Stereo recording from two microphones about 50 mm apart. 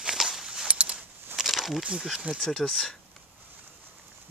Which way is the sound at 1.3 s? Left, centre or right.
Centre.